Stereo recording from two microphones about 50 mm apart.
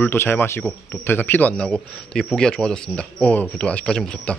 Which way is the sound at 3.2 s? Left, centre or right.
Left.